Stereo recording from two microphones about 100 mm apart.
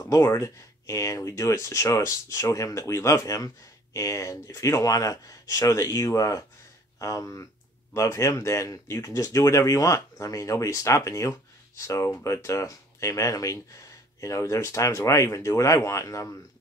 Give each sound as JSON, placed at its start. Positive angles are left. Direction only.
{"t": 0.0, "sound": "speech", "side_deg": 35}